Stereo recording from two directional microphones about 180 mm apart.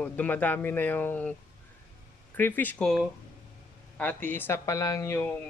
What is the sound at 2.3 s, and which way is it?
Speech, 10° left (ahead or behind).